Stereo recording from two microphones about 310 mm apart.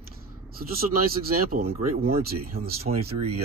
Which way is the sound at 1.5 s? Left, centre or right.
Right.